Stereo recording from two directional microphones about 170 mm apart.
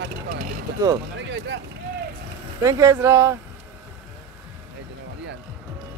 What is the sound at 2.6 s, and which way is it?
Speech, 20° right (ahead or behind).